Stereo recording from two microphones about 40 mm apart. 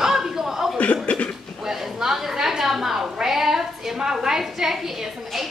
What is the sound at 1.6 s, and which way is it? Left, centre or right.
A woman's voice, centre.